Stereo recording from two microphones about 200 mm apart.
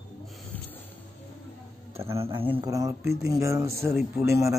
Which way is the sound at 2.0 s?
30° right (ahead or behind).